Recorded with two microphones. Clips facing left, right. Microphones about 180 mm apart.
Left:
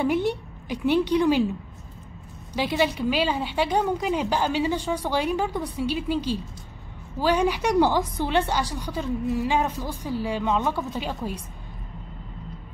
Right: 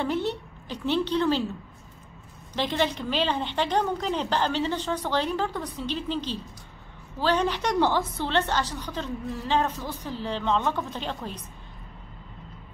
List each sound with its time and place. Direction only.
0.0 s a woman's voice: 10° left (ahead or behind)
2.5 s a woman's voice: 10° left (ahead or behind)